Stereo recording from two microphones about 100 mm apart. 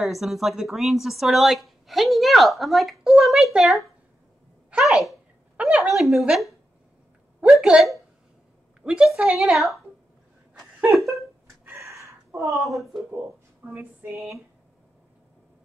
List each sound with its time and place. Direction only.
0.0 s a woman's voice: centre (ahead or behind)
7.6 s a woman's voice: 5° right (ahead or behind)
10.9 s a woman's voice: centre (ahead or behind)
11.6 s a sound: 30° right (ahead or behind)
12.5 s a woman's voice: centre (ahead or behind)
13.7 s a sound: 25° right (ahead or behind)